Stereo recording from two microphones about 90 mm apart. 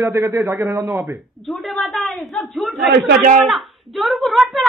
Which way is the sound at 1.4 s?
Centre (ahead or behind).